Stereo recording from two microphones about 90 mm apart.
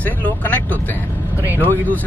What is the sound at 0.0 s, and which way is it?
Vehicle, 20° left (ahead or behind).